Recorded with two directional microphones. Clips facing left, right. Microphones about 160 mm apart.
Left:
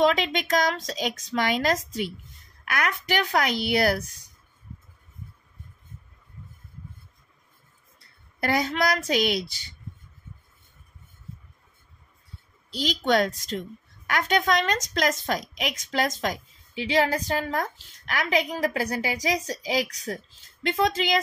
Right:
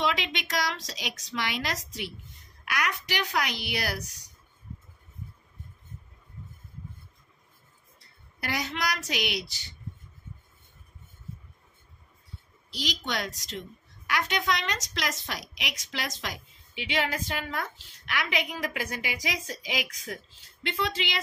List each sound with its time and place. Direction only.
0.0 s a woman's voice: 45° left (ahead or behind)
8.4 s a woman's voice: 50° left (ahead or behind)
12.7 s a woman's voice: 50° left (ahead or behind)